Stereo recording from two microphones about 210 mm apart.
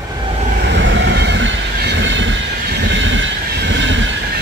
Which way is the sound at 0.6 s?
55° right (ahead or behind).